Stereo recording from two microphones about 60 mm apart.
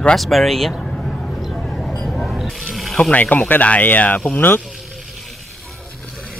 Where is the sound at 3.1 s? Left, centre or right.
Left.